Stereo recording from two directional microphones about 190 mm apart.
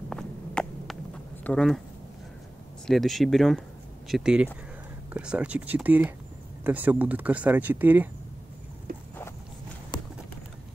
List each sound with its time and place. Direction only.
0.1 s a sound: centre (ahead or behind)
1.4 s speech: 5° left (ahead or behind)
2.9 s speech: centre (ahead or behind)